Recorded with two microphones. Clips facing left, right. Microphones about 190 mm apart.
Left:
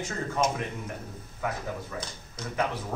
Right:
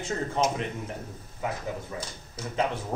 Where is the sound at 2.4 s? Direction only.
5° right (ahead or behind).